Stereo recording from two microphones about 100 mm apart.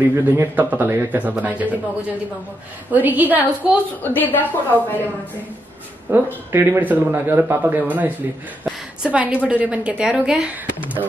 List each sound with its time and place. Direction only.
0.1 s speech: 20° right (ahead or behind)
4.0 s a woman's voice: 20° left (ahead or behind)
6.1 s a woman's voice: 25° right (ahead or behind)